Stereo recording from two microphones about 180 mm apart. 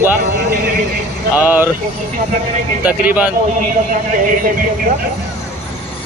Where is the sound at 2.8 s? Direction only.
10° right (ahead or behind).